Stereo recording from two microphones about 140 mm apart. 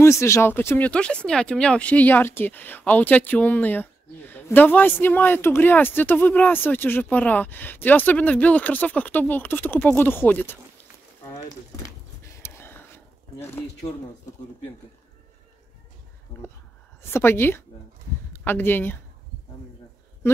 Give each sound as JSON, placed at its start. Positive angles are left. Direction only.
{"t": 0.0, "sound": "speech", "side_deg": 20}
{"t": 12.4, "sound": "a sound", "side_deg": 20}
{"t": 17.1, "sound": "speech", "side_deg": 15}